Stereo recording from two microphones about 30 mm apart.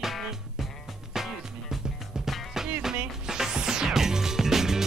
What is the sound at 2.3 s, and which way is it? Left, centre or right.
Music, centre.